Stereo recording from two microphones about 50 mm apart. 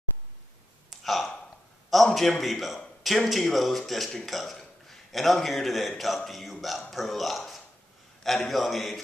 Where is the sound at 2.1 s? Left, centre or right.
Centre.